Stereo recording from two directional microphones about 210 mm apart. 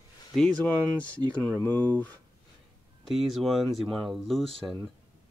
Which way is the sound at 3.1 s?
Centre (ahead or behind).